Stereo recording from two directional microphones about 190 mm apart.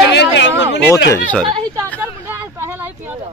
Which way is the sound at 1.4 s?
25° right (ahead or behind).